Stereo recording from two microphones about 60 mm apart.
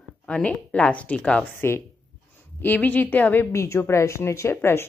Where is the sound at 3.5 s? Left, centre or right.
Left.